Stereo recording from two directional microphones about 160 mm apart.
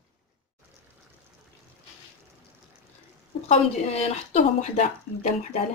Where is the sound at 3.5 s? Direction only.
40° left (ahead or behind).